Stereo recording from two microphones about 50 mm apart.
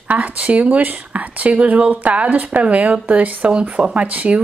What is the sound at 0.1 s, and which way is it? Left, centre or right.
Speech, right.